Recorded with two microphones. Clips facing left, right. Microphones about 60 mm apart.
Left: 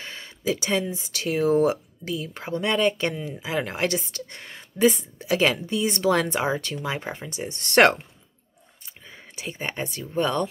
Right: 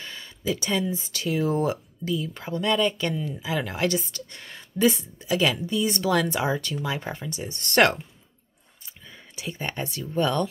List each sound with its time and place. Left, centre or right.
0.0 s speech: left
9.0 s a sound: centre
9.9 s speech: left